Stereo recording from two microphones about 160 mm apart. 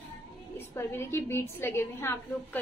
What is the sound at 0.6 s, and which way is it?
A woman's voice, 15° left (ahead or behind).